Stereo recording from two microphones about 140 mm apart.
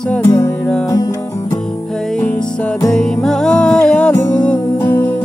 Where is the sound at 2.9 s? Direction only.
5° left (ahead or behind).